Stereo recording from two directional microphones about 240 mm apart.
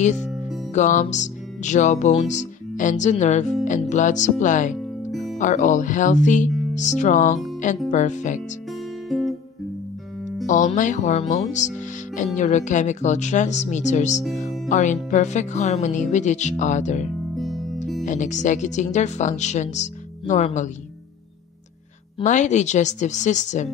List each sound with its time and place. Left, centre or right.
0.2 s music: centre
0.7 s music: left
3.9 s speech: left
5.1 s music: centre
5.4 s speech: left
9.1 s guitar: centre
10.4 s speech: left
17.4 s music: centre
18.0 s speech: left
22.2 s speech: left